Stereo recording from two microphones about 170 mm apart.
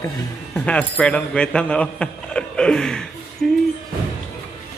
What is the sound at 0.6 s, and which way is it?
A man's voice, 10° left (ahead or behind).